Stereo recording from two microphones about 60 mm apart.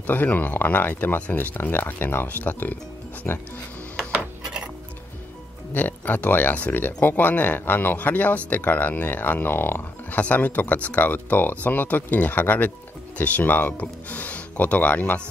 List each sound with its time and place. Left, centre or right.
0.0 s speech: left
5.7 s speech: left